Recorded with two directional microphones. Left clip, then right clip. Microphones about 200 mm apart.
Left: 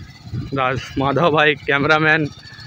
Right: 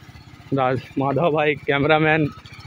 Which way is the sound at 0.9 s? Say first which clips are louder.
Left 5 dB; 15° left (ahead or behind).